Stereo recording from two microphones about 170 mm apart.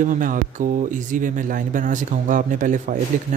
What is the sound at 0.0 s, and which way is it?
Speech, 50° right (ahead or behind).